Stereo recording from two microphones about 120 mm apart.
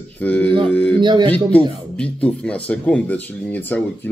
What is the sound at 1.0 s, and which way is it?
Speech, 40° right (ahead or behind).